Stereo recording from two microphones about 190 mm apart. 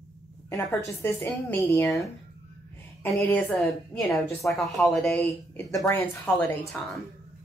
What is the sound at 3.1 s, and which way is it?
A woman's voice, 5° left (ahead or behind).